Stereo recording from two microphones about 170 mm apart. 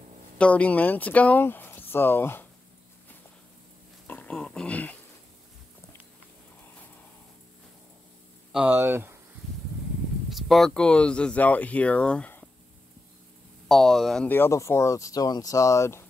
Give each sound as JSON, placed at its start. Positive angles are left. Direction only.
{"t": 0.4, "sound": "speech", "side_deg": 10}
{"t": 4.1, "sound": "grunt", "side_deg": 5}
{"t": 8.5, "sound": "speech", "side_deg": -10}
{"t": 10.3, "sound": "speech", "side_deg": 0}
{"t": 13.7, "sound": "speech", "side_deg": 0}